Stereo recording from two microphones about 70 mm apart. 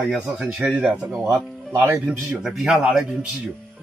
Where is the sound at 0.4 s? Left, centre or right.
Centre.